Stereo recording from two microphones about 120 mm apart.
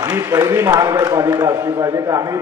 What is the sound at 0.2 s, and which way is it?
A man's voice, 25° right (ahead or behind).